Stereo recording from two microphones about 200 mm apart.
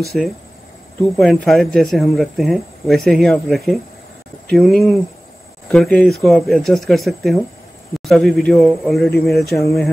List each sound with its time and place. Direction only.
0.1 s a man's voice: centre (ahead or behind)